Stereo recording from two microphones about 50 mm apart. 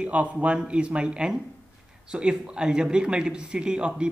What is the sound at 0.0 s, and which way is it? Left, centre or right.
Speech, right.